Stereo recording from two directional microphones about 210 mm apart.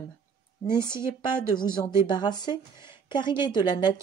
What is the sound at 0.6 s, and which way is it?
Speech, 20° left (ahead or behind).